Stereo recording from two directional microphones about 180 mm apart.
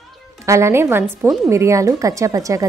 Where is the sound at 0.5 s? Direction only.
15° right (ahead or behind).